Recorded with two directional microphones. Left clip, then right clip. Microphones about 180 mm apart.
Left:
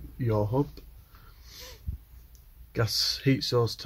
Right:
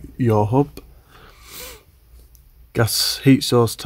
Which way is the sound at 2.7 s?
60° right (ahead or behind).